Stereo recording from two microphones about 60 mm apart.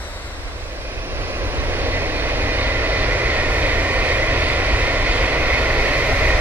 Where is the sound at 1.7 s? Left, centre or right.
Right.